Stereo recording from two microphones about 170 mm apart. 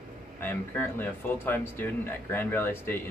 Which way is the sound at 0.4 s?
10° left (ahead or behind).